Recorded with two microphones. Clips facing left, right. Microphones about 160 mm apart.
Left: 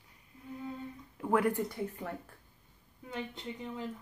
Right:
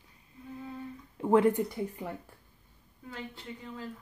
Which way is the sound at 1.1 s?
25° right (ahead or behind).